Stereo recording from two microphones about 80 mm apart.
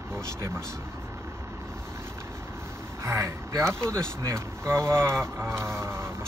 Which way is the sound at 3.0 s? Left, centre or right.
Right.